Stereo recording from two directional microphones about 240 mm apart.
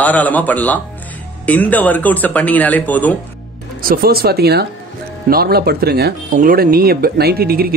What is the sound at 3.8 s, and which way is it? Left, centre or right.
Speech, right.